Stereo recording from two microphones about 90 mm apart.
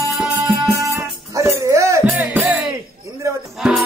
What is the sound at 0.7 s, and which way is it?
Music, 35° right (ahead or behind).